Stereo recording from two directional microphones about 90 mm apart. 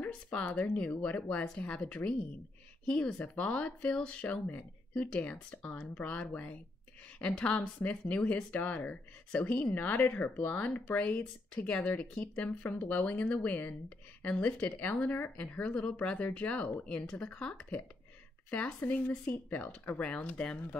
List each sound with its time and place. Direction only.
0.0 s speech: 15° left (ahead or behind)